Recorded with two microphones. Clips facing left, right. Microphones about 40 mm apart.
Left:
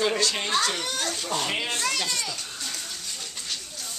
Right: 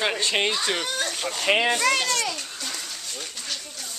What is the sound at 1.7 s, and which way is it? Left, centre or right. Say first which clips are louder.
Speech: right 6 dB; right.